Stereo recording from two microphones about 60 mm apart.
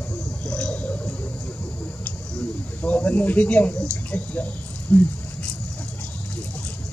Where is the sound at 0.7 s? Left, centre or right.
Left.